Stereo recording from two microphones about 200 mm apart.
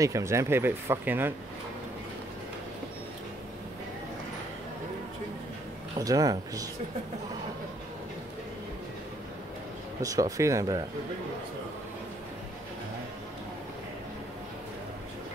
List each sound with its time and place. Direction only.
0.0 s speech: 15° right (ahead or behind)
5.9 s speech: 15° right (ahead or behind)
10.0 s speech: 15° right (ahead or behind)